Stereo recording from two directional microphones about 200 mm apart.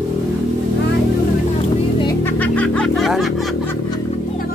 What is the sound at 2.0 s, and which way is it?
Music, 10° left (ahead or behind).